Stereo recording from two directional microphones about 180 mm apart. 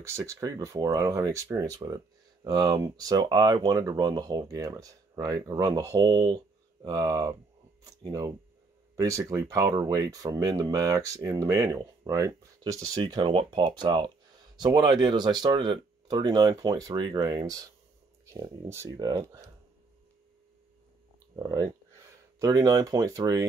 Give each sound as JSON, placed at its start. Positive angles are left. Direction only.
{"t": 0.0, "sound": "speech", "side_deg": -15}
{"t": 21.4, "sound": "speech", "side_deg": -20}